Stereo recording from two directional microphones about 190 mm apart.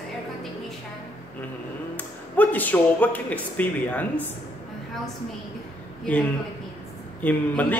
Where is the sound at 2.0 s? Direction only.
10° left (ahead or behind).